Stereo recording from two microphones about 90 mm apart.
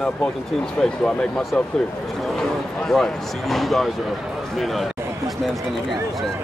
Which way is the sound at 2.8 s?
5° left (ahead or behind).